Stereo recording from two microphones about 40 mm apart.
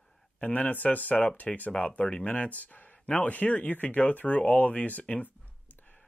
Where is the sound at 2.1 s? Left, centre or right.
Left.